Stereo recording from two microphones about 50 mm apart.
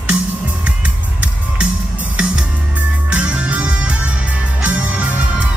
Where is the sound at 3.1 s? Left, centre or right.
Right.